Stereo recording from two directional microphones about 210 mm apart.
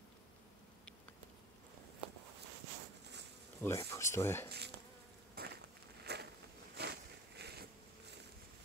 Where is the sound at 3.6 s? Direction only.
15° left (ahead or behind).